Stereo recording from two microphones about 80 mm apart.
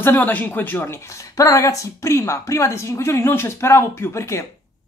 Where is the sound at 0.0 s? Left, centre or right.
Left.